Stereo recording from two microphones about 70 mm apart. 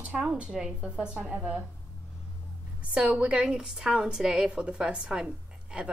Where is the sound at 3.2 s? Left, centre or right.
Centre.